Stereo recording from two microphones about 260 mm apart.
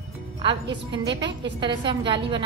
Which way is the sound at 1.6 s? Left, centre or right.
Centre.